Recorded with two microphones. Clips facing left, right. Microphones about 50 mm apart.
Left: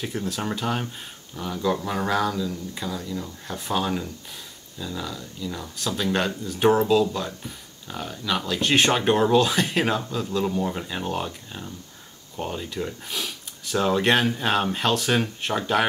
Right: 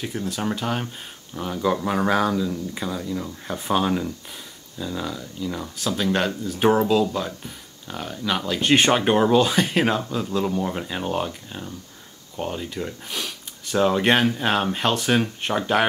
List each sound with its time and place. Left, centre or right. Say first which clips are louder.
0.0 s speech: right 1 dB; centre
1.3 s speech: right 2 dB; centre
5.8 s speech: right 2 dB; centre
10.6 s speech: right 1 dB; centre